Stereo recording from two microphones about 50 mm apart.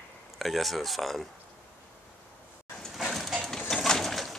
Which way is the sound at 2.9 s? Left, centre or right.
Centre.